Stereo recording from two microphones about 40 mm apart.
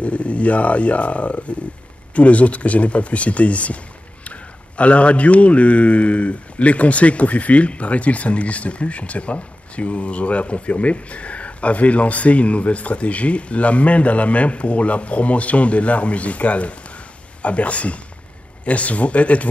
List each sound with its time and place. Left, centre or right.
0.0 s speech: left